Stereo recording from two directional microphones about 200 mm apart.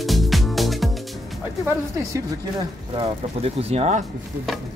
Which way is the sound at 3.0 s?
30° right (ahead or behind).